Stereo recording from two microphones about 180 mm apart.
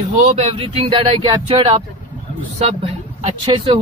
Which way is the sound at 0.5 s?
30° right (ahead or behind).